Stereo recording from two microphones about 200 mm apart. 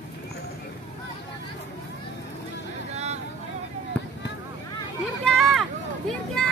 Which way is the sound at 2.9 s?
35° right (ahead or behind).